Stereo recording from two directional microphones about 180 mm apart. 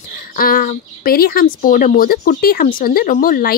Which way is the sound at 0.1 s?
50° left (ahead or behind).